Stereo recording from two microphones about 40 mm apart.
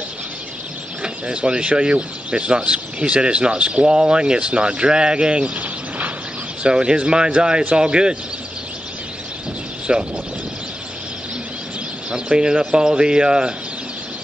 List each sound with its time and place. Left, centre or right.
1.0 s speech: right
5.6 s a sound: right
6.6 s speech: right
9.9 s speech: right
12.1 s speech: right